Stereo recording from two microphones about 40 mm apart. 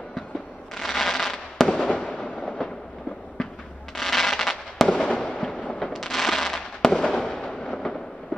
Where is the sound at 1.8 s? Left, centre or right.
Left.